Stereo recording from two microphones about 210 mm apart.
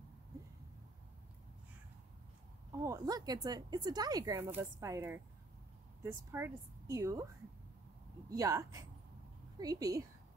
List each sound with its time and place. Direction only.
2.8 s speech: 15° right (ahead or behind)
6.3 s speech: 10° right (ahead or behind)
8.4 s speech: 15° right (ahead or behind)